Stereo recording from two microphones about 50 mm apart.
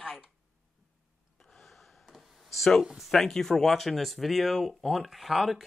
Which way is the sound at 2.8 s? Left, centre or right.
Centre.